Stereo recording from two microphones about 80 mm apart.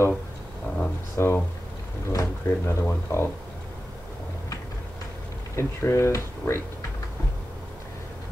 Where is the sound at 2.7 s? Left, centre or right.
Left.